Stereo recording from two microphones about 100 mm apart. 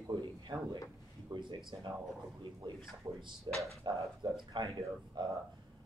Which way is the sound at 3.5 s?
45° right (ahead or behind).